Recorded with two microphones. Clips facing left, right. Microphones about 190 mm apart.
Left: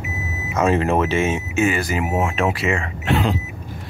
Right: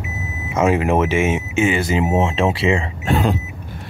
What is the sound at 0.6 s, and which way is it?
Speech, 15° right (ahead or behind).